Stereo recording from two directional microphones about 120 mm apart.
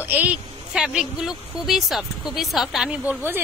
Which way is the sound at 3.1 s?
20° right (ahead or behind).